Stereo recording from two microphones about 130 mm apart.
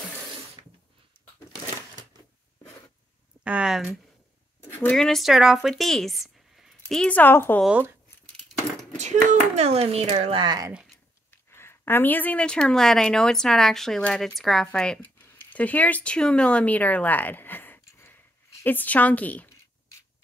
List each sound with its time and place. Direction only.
3.4 s speech: 5° right (ahead or behind)
4.6 s a sound: 15° left (ahead or behind)
4.9 s speech: 5° left (ahead or behind)
7.6 s speech: 10° right (ahead or behind)
8.9 s speech: 65° right (ahead or behind); by 10.7 s 35° right (ahead or behind)
11.5 s a woman's voice: 15° left (ahead or behind)